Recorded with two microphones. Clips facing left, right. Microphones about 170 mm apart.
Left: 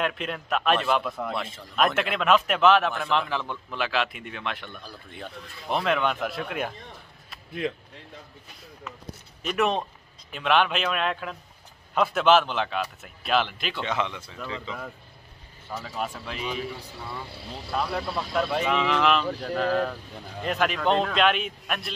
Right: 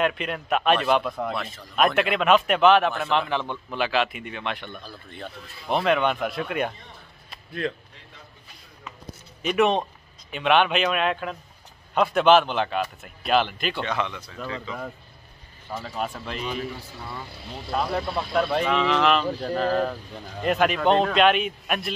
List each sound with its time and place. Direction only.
0.0 s a man's voice: centre (ahead or behind)
4.8 s speech: 10° left (ahead or behind)
5.7 s a man's voice: centre (ahead or behind)
7.6 s speech: 15° left (ahead or behind)
9.4 s a man's voice: centre (ahead or behind)
13.8 s speech: 20° left (ahead or behind)
16.0 s a man's voice: centre (ahead or behind)
17.7 s a man's voice: 5° right (ahead or behind)